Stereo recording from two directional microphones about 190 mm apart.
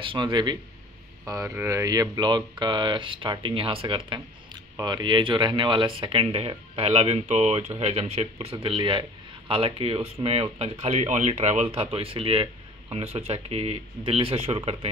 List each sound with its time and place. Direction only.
0.0 s speech: 25° right (ahead or behind)